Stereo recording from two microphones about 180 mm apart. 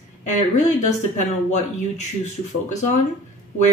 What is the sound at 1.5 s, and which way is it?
Speech, 40° left (ahead or behind).